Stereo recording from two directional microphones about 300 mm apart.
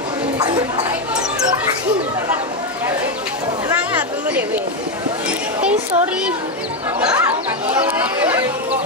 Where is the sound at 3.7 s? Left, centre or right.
Centre.